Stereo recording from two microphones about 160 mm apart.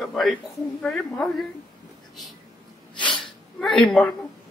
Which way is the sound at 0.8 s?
5° left (ahead or behind).